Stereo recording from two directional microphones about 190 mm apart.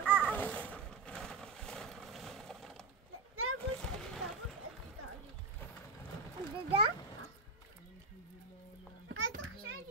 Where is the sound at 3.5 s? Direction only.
5° left (ahead or behind).